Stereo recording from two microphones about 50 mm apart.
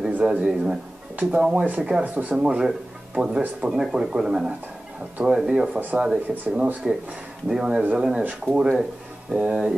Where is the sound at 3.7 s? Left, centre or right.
Centre.